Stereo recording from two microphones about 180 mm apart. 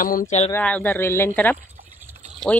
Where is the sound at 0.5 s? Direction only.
10° left (ahead or behind).